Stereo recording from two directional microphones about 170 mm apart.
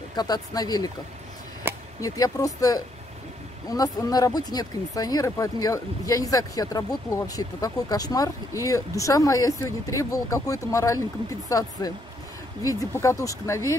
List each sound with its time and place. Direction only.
0.1 s speech: 25° left (ahead or behind)
1.6 s a sound: 15° right (ahead or behind)
2.0 s speech: 20° left (ahead or behind)